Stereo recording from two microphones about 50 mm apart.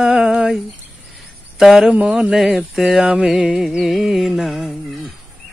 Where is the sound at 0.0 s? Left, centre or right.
Centre.